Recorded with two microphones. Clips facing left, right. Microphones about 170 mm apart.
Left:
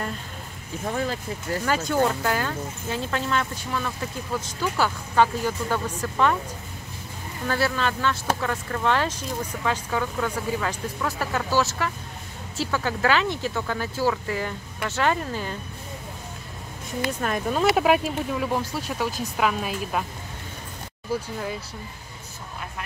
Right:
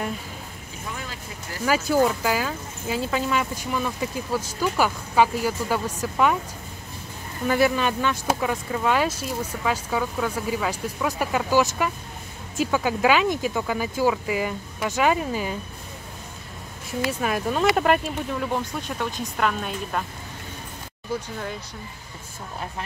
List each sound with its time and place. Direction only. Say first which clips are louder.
0.8 s speech: left 9 dB; 45° left (ahead or behind)
1.7 s speech: right 3 dB; 5° right (ahead or behind)
7.4 s speech: right 4 dB; 15° right (ahead or behind)
17.2 s speech: even; 5° right (ahead or behind)